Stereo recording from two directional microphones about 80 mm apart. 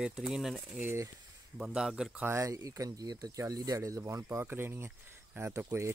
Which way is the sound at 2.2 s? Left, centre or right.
Right.